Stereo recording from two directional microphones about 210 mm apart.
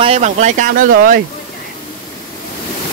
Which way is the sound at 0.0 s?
30° right (ahead or behind).